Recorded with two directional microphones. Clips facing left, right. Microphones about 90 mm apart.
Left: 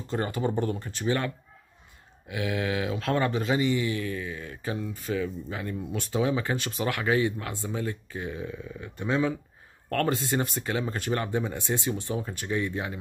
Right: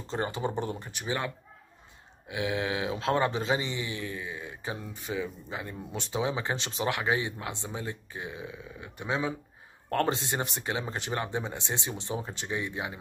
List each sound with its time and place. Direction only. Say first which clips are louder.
0.1 s speech: left 3 dB; 25° right (ahead or behind)